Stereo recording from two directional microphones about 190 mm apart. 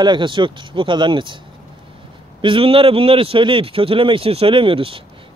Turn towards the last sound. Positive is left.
turn(degrees=-30)  # may be behind; listen again after turning